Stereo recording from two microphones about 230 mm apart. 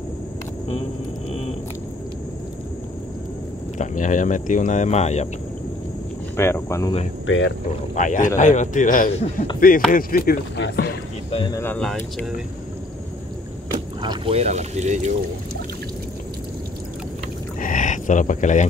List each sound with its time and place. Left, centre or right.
3.7 s speech: left
6.3 s speech: centre
7.2 s speech: left
7.7 s speech: left
9.8 s speech: left
11.2 s speech: left
11.5 s speech: centre
14.0 s speech: right
17.6 s a sound: left